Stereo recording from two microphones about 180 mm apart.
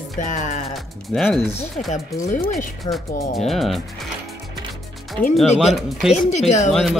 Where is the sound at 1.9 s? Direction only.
45° left (ahead or behind).